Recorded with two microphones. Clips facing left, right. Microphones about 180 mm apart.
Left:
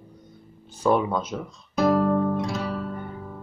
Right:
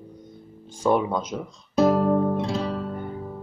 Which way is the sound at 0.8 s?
15° right (ahead or behind).